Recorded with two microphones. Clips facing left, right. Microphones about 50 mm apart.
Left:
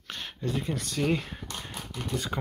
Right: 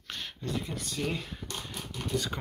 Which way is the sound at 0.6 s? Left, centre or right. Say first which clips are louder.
Left 5 dB; left.